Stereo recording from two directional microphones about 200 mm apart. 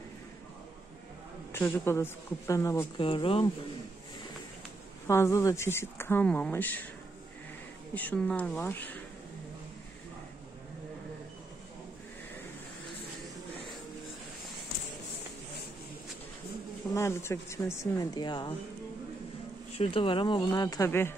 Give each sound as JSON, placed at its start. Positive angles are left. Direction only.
{"t": 1.5, "sound": "speech", "side_deg": 10}
{"t": 3.1, "sound": "speech", "side_deg": 25}
{"t": 5.0, "sound": "speech", "side_deg": 15}
{"t": 7.9, "sound": "speech", "side_deg": 10}
{"t": 16.9, "sound": "speech", "side_deg": 15}
{"t": 19.7, "sound": "speech", "side_deg": 30}